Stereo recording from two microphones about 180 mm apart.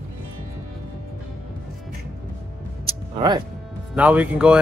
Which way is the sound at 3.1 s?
25° right (ahead or behind).